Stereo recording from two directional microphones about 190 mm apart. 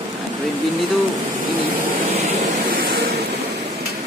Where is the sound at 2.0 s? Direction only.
35° right (ahead or behind).